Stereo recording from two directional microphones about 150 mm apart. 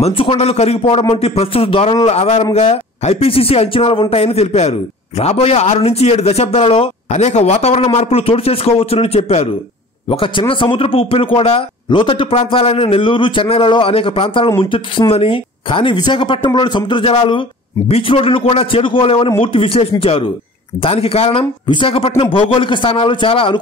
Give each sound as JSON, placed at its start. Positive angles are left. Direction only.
{"t": 0.0, "sound": "speech", "side_deg": 40}